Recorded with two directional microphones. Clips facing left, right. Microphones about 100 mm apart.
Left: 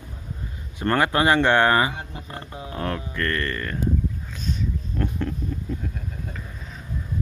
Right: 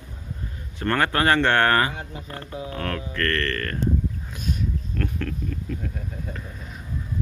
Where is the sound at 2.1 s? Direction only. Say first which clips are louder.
Even; 20° left (ahead or behind).